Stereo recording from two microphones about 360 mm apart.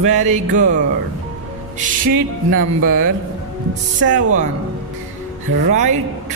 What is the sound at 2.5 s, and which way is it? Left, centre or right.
Speech, right.